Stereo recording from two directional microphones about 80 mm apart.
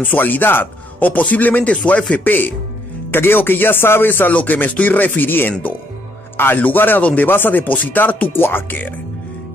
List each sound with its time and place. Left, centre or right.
0.0 s speech: left